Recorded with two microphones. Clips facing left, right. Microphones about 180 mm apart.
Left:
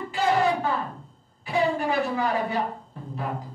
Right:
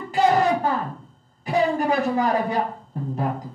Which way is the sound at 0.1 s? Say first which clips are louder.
Right 4 dB; 40° right (ahead or behind).